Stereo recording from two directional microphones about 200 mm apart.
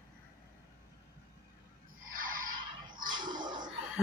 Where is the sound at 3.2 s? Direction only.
20° right (ahead or behind).